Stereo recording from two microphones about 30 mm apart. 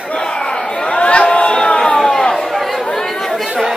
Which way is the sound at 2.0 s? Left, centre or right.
Centre.